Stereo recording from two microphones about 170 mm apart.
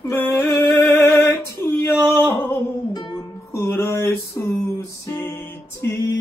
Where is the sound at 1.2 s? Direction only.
15° left (ahead or behind).